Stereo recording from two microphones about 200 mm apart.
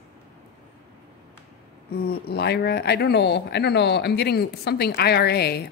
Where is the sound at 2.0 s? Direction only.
50° left (ahead or behind).